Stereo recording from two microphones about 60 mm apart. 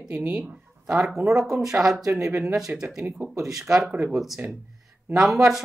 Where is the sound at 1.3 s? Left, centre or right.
Centre.